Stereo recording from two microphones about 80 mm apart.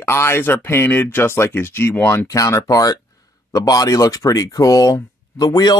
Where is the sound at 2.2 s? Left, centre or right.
Left.